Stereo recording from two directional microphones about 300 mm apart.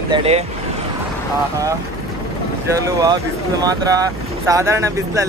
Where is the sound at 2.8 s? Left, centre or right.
Centre.